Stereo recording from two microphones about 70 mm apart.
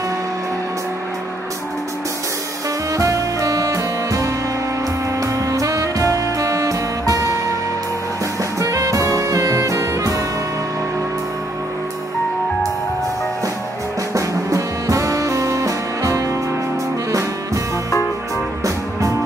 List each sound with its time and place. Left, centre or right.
2.9 s music: right
8.5 s saxophone: right
14.1 s saxophone: right
18.6 s music: right